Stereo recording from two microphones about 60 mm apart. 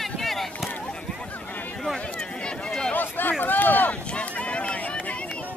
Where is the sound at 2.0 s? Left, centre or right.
Centre.